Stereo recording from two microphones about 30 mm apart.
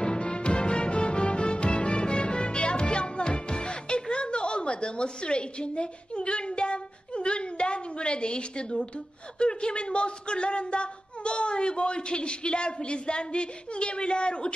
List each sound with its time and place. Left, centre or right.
0.0 s music: left
9.4 s speech: left